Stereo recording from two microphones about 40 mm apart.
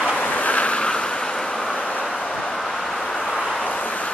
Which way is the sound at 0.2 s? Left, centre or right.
Left.